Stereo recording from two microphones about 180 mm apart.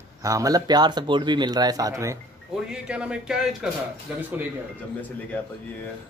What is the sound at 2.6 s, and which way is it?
Speech, 5° right (ahead or behind).